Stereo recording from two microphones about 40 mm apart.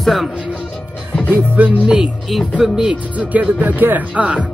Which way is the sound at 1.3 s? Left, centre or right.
Right.